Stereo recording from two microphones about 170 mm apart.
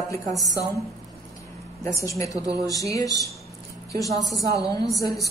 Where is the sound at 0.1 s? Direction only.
20° left (ahead or behind).